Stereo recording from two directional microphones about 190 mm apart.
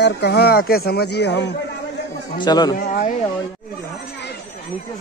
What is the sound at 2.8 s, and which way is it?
Speech, 45° left (ahead or behind).